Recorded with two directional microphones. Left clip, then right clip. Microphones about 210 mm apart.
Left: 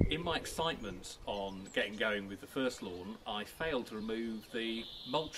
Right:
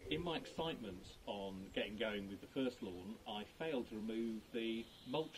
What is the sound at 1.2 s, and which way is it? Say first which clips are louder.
Speech: left 7 dB; 40° left (ahead or behind).